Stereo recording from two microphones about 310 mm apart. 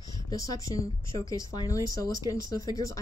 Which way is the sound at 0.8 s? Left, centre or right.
Centre.